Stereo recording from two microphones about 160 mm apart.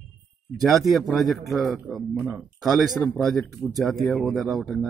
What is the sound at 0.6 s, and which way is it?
Speech, centre (ahead or behind).